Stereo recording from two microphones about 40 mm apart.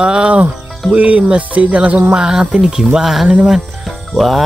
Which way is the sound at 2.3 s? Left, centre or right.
Centre.